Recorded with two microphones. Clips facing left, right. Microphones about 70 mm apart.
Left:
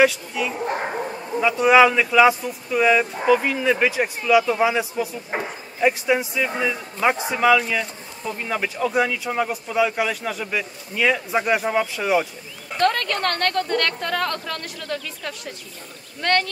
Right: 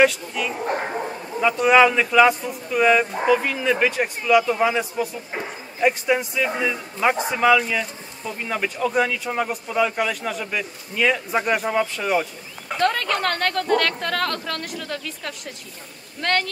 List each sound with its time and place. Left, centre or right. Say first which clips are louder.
0.0 s a man's voice: even; centre
5.3 s a sound: left 4 dB; left
5.8 s a man's voice: even; centre